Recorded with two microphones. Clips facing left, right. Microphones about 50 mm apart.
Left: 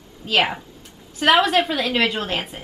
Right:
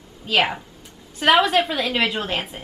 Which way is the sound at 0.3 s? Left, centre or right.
Centre.